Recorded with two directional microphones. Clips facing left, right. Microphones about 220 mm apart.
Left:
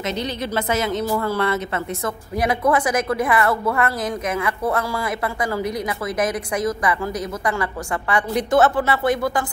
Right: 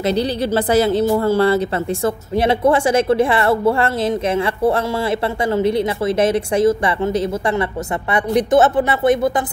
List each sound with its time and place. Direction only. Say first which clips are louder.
0.7 s speech: right 8 dB; 35° right (ahead or behind)